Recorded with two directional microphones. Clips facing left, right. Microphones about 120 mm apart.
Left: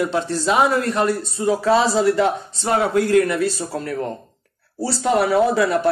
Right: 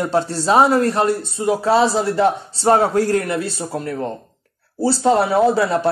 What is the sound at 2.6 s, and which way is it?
Speech, 35° right (ahead or behind).